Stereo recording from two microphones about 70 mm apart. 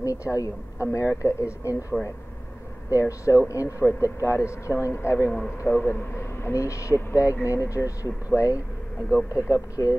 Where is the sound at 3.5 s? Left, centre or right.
Left.